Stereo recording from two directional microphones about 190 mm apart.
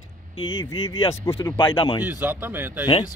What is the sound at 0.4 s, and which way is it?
Speech, 25° left (ahead or behind).